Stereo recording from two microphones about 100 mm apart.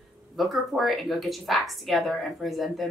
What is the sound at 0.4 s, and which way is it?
A woman's voice, centre (ahead or behind).